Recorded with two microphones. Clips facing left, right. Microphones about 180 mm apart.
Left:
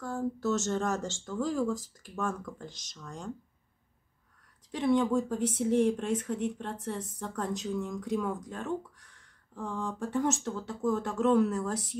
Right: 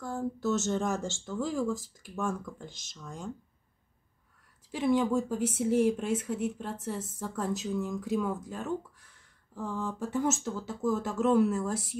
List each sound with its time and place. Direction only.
0.0 s speech: 5° right (ahead or behind)
4.6 s speech: 5° right (ahead or behind)